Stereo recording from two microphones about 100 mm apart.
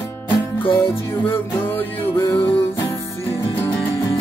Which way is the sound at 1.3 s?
20° left (ahead or behind).